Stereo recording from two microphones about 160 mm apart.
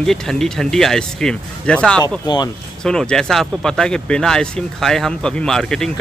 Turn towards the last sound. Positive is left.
turn(degrees=5)  # may be behind; listen again after turning